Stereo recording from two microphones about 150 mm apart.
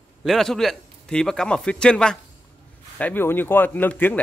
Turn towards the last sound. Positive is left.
turn(degrees=10)  # may be behind; listen again after turning